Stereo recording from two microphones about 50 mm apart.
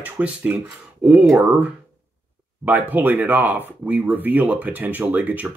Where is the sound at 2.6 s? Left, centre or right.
Right.